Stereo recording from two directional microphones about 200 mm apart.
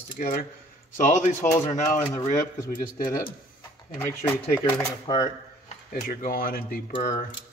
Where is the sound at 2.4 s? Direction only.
15° left (ahead or behind).